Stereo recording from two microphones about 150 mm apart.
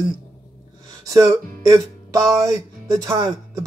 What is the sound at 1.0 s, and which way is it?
Speech, 20° right (ahead or behind).